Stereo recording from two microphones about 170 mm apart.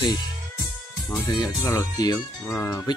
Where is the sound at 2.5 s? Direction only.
10° left (ahead or behind).